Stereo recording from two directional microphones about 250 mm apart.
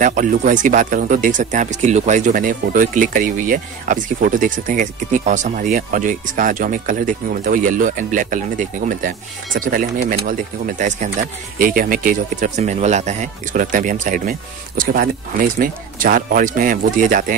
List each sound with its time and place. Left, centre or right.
0.0 s speech: right